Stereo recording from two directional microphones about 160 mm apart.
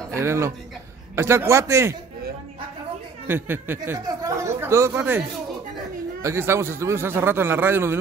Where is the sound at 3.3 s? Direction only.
15° right (ahead or behind).